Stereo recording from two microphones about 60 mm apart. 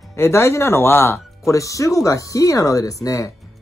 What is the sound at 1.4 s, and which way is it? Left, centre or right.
Speech, left.